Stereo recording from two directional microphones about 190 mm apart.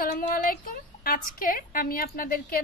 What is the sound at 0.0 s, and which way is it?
A woman's voice, 50° left (ahead or behind).